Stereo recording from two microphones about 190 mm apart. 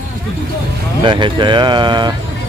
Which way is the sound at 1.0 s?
25° right (ahead or behind).